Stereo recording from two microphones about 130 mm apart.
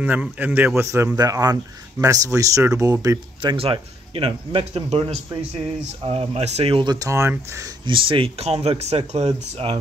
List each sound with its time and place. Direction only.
0.0 s speech: 15° right (ahead or behind)
3.5 s speech: 45° right (ahead or behind); by 7.7 s 20° right (ahead or behind)
7.8 s speech: 40° right (ahead or behind)